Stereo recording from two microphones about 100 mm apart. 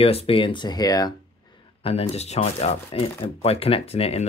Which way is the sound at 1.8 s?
85° left.